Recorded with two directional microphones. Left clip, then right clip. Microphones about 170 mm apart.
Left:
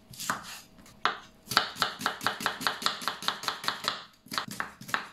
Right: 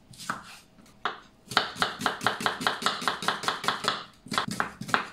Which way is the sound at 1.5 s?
5° right (ahead or behind).